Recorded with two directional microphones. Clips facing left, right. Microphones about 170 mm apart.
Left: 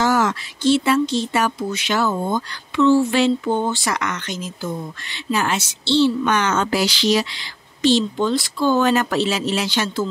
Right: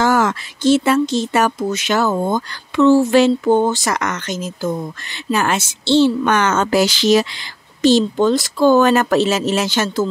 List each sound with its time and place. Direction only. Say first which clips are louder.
0.0 s speech: right 3 dB; 50° right (ahead or behind)